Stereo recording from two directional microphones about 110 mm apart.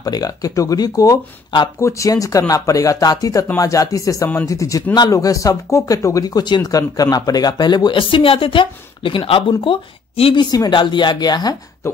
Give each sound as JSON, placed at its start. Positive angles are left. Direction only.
{"t": 0.0, "sound": "speech", "side_deg": 35}
{"t": 10.3, "sound": "speech", "side_deg": 40}
{"t": 11.8, "sound": "speech", "side_deg": 25}